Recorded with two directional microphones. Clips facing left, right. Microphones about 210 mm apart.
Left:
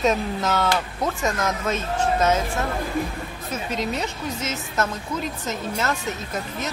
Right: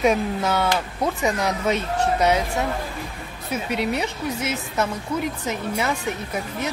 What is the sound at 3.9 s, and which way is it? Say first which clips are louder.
Speech: right 2 dB; 10° right (ahead or behind).